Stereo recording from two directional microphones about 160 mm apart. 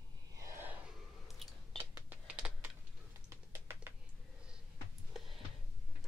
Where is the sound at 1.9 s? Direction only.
10° right (ahead or behind).